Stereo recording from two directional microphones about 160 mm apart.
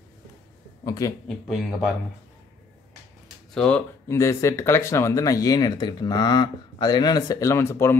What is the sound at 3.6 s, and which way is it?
Speech, 10° left (ahead or behind).